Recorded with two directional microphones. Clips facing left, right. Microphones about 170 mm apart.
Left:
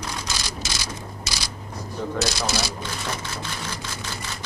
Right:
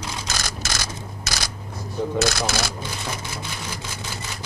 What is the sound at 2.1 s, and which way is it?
Speech, 50° right (ahead or behind).